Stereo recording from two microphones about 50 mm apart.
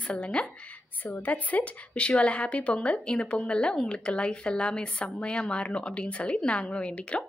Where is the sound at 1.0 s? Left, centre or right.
Left.